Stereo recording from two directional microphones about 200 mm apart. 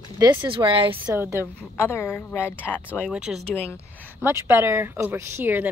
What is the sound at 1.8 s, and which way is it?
Speech, 15° left (ahead or behind).